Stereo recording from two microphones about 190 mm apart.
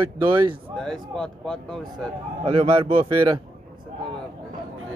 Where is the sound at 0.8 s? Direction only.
5° left (ahead or behind).